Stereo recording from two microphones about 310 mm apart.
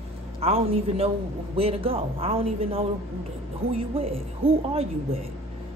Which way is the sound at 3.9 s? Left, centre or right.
Centre.